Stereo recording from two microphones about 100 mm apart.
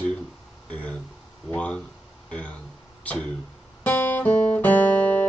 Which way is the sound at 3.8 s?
15° left (ahead or behind).